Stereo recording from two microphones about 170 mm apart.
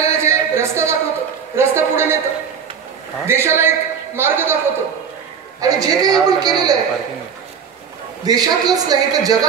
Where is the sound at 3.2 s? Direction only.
15° right (ahead or behind).